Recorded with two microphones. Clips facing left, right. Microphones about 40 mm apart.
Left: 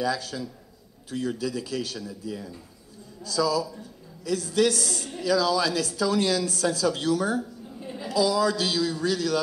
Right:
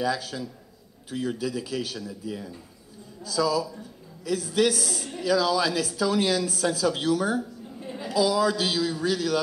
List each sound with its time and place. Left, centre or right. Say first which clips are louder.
0.0 s a man's voice: even; centre